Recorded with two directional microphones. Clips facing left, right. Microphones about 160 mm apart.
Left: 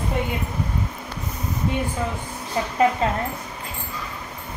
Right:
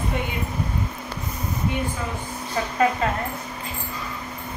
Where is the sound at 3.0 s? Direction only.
25° left (ahead or behind).